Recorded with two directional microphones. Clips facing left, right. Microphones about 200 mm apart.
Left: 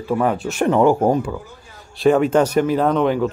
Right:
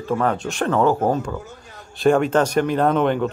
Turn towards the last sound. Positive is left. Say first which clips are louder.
# left 1 dB
turn(degrees=0)  # may be behind; listen again after turning